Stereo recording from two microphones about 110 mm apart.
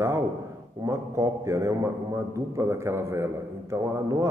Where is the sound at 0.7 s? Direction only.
25° right (ahead or behind).